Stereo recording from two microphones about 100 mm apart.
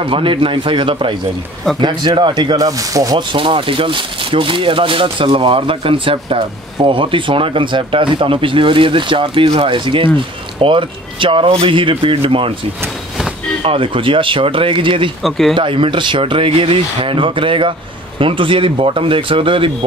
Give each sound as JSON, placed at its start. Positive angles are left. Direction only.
{"t": 0.0, "sound": "speech", "side_deg": -60}
{"t": 3.2, "sound": "speech", "side_deg": -55}
{"t": 13.6, "sound": "speech", "side_deg": -65}
{"t": 15.2, "sound": "speech", "side_deg": 5}
{"t": 15.5, "sound": "speech", "side_deg": -60}